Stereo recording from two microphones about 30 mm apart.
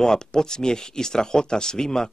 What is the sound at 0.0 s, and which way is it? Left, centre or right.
A man's voice, left.